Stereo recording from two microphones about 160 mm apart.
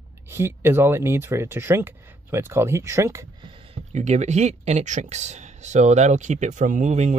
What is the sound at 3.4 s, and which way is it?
Speech, 35° right (ahead or behind).